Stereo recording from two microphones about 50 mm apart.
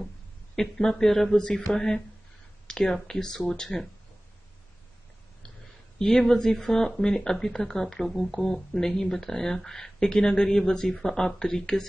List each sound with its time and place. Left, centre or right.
0.6 s speech: centre
5.9 s speech: centre